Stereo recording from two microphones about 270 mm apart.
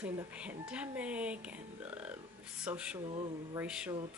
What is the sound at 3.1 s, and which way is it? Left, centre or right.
Speech, centre.